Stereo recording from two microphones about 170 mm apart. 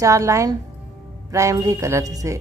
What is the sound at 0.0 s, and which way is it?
Speech, 20° right (ahead or behind).